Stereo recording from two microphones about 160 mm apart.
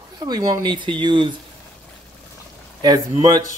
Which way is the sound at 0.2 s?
25° right (ahead or behind).